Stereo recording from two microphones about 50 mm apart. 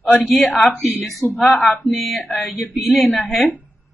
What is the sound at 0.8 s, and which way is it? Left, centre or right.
Speech, left.